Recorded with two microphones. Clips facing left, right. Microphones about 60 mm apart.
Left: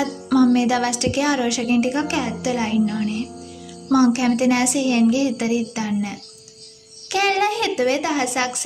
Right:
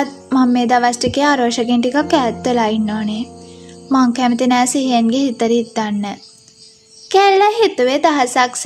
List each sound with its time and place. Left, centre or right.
0.0 s speech: right
3.9 s speech: right
7.1 s speech: right